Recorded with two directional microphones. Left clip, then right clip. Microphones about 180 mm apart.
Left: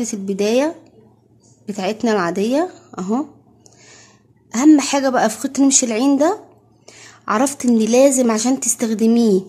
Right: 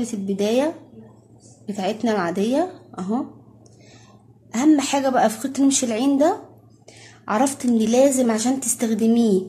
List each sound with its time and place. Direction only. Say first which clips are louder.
0.0 s a woman's voice: left 4 dB; 40° left (ahead or behind)
4.5 s a woman's voice: left 5 dB; 35° left (ahead or behind)